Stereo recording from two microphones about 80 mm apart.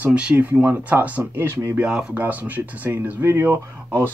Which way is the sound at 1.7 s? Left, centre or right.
Centre.